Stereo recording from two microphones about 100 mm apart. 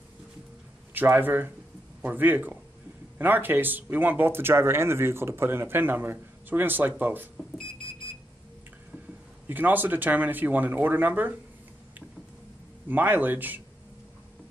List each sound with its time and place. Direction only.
0.9 s speech: 20° right (ahead or behind)
7.3 s speech: 5° left (ahead or behind)
9.5 s speech: 20° right (ahead or behind)
12.8 s speech: 20° right (ahead or behind)